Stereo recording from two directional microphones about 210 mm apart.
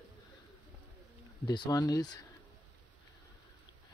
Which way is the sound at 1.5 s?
15° left (ahead or behind).